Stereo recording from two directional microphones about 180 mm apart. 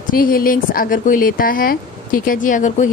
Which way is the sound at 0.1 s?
55° left (ahead or behind).